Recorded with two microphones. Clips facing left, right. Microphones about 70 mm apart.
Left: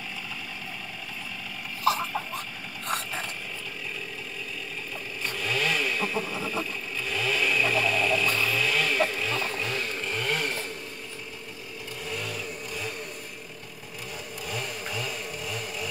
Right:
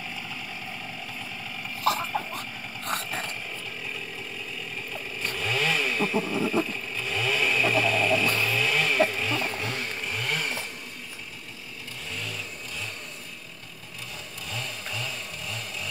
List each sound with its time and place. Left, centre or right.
1.8 s a sound: right
5.2 s motorcycle: right
10.1 s chainsaw: centre
14.5 s chainsaw: centre